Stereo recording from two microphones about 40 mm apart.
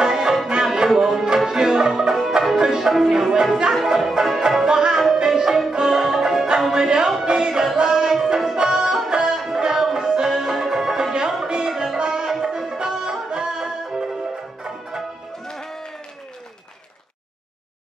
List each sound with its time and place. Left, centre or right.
0.0 s music: centre
4.6 s music: centre
15.5 s a sound: centre